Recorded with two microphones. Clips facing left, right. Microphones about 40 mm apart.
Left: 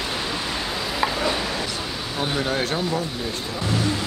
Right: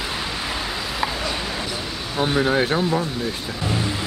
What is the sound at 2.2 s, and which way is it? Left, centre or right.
Speech, centre.